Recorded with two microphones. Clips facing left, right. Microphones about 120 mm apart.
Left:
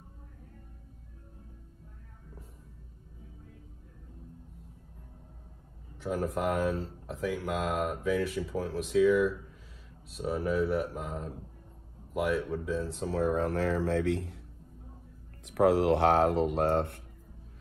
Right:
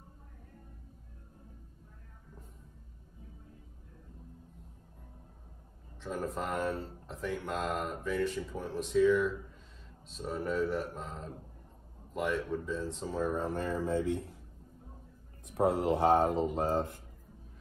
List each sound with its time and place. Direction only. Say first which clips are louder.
6.3 s speech: left 5 dB; 5° left (ahead or behind)
13.1 s speech: left 5 dB; 80° left
15.4 s speech: left 5 dB; 80° left